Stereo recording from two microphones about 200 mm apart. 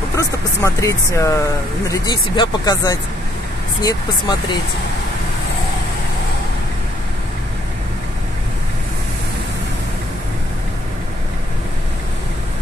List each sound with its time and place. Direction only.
0.1 s speech: 15° left (ahead or behind)